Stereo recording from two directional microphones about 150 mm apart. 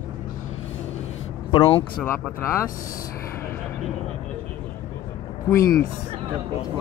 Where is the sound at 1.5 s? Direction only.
35° left (ahead or behind).